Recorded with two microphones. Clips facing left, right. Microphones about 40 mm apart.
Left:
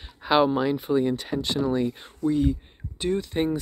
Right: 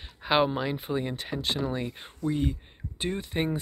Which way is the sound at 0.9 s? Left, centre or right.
Centre.